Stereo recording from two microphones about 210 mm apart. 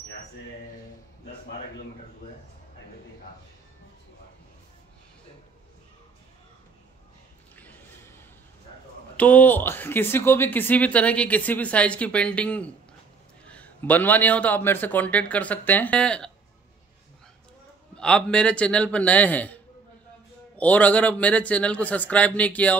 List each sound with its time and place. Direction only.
7.5 s a sound: 10° left (ahead or behind)
9.1 s speech: 5° left (ahead or behind)
17.9 s a man's voice: 5° left (ahead or behind)